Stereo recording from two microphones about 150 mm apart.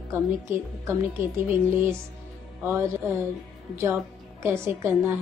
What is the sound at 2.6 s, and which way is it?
Music, 20° right (ahead or behind).